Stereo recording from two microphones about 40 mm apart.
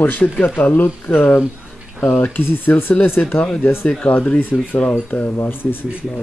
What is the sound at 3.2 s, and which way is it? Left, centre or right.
Speech, left.